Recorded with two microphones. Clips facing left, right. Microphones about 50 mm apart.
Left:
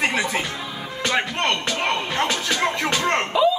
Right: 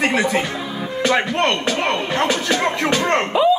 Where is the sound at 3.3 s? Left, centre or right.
Right.